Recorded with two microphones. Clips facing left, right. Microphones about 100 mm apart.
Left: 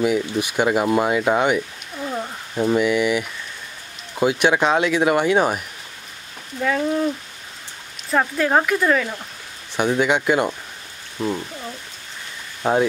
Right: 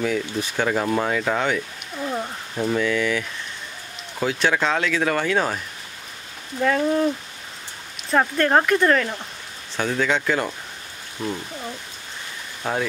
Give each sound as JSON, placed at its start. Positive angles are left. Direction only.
{"t": 0.0, "sound": "speech", "side_deg": 15}
{"t": 2.0, "sound": "a sound", "side_deg": 0}
{"t": 2.5, "sound": "speech", "side_deg": 15}
{"t": 6.6, "sound": "speech", "side_deg": 0}
{"t": 8.1, "sound": "speech", "side_deg": 0}
{"t": 9.8, "sound": "speech", "side_deg": 20}
{"t": 12.6, "sound": "speech", "side_deg": 20}